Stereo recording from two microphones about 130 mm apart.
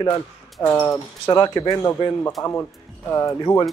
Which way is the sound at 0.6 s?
10° left (ahead or behind).